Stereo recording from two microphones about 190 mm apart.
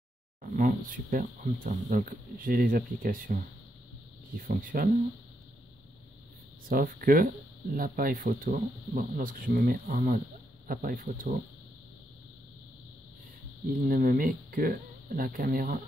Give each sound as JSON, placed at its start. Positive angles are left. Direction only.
{"t": 0.4, "sound": "speech", "side_deg": -45}
{"t": 6.7, "sound": "speech", "side_deg": -50}
{"t": 13.8, "sound": "speech", "side_deg": -45}